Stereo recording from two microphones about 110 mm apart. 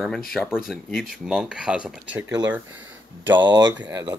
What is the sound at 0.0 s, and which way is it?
Speech, centre (ahead or behind).